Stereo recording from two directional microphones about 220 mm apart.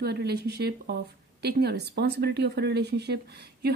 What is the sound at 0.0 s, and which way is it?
Speech, 50° right (ahead or behind).